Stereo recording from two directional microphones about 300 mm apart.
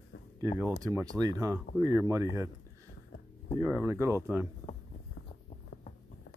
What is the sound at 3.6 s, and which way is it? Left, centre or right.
Speech, centre.